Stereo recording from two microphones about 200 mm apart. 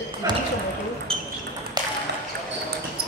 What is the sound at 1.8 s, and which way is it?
Ping, 20° right (ahead or behind).